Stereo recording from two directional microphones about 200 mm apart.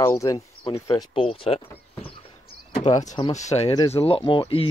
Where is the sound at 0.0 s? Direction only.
15° left (ahead or behind).